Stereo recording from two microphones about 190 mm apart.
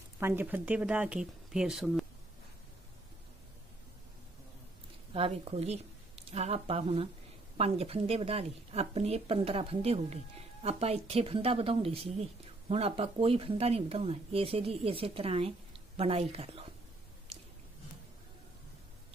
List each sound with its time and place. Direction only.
0.2 s speech: 10° right (ahead or behind)
5.1 s a woman's voice: 30° right (ahead or behind)